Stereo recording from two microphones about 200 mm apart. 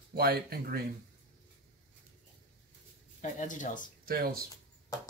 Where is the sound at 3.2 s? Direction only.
40° left (ahead or behind).